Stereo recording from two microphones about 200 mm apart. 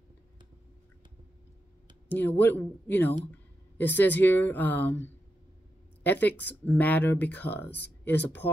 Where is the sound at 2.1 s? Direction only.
10° left (ahead or behind).